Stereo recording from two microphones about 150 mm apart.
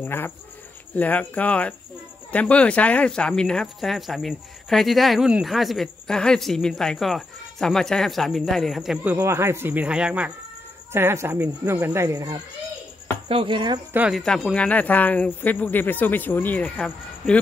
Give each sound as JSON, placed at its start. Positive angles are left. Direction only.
{"t": 0.0, "sound": "speech", "side_deg": 15}
{"t": 9.1, "sound": "speech", "side_deg": -15}
{"t": 13.3, "sound": "speech", "side_deg": -35}
{"t": 13.9, "sound": "speech", "side_deg": -5}
{"t": 14.2, "sound": "speech", "side_deg": 5}